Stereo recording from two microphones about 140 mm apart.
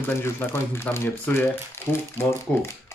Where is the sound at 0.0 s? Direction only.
15° left (ahead or behind).